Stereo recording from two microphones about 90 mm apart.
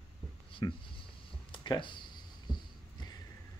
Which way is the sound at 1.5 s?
65° left (ahead or behind).